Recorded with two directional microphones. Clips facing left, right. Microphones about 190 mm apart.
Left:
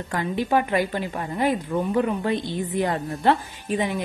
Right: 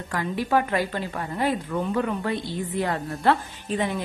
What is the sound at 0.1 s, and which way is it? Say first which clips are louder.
A woman's voice: left 1 dB; 25° left (ahead or behind).